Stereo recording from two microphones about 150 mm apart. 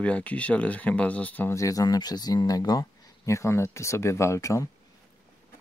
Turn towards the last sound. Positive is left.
turn(degrees=20)  # may be behind; listen again after turning